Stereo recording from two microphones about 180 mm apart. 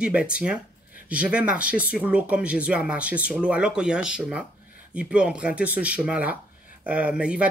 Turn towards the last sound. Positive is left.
turn(degrees=-5)  # may be behind; listen again after turning